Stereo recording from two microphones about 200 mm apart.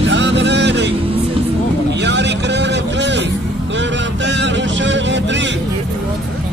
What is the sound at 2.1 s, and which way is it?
Vehicle, 60° right (ahead or behind).